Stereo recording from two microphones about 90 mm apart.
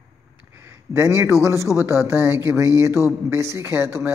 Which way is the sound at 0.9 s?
30° right (ahead or behind).